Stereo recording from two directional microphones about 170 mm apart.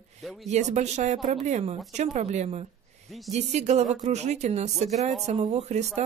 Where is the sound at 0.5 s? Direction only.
40° right (ahead or behind).